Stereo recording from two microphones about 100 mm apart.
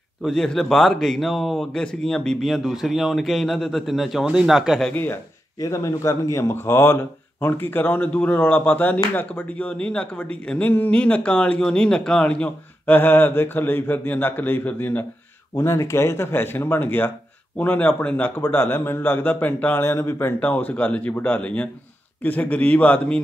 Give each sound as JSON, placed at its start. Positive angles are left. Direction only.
{"t": 0.2, "sound": "speech", "side_deg": 5}
{"t": 4.9, "sound": "speech", "side_deg": 20}
{"t": 5.6, "sound": "a man's voice", "side_deg": 30}